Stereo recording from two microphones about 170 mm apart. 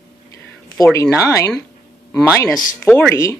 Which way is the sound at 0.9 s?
15° left (ahead or behind).